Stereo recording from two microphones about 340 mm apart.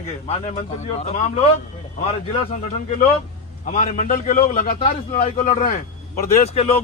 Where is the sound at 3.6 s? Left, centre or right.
Left.